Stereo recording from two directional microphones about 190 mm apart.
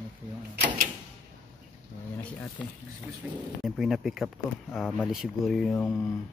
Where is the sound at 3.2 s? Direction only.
10° right (ahead or behind).